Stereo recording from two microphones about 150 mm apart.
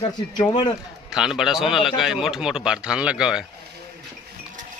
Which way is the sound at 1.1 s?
5° right (ahead or behind).